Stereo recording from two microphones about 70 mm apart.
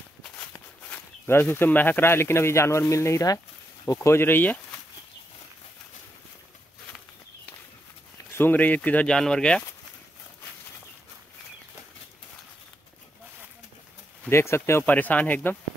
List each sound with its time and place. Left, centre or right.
1.2 s speech: left
4.2 s speech: left
8.4 s speech: left
9.1 s speech: centre
14.3 s speech: left
14.9 s speech: left